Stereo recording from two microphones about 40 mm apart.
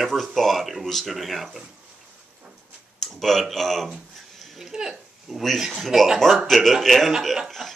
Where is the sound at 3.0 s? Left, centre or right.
Centre.